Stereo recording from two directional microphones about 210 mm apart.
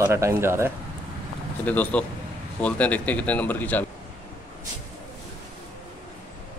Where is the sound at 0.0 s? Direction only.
10° right (ahead or behind).